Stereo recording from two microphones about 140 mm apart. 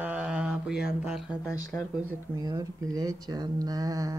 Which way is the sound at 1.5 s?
20° left (ahead or behind).